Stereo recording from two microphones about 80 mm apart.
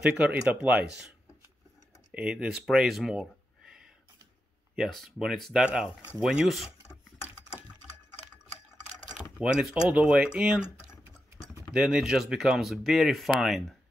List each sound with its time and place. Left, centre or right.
0.0 s speech: centre
2.1 s speech: centre
6.9 s a sound: left
9.4 s speech: centre
11.7 s speech: centre